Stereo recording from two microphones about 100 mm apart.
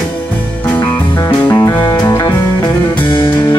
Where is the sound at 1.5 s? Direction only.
45° left (ahead or behind).